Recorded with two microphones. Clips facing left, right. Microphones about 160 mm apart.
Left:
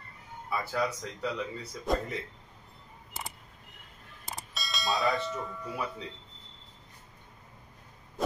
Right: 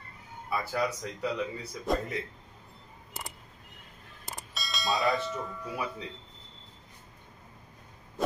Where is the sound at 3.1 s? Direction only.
Centre (ahead or behind).